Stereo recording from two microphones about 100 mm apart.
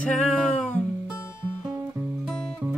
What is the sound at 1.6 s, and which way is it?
Music, 35° right (ahead or behind).